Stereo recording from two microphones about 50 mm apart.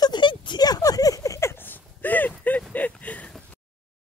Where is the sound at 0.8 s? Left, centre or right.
Left.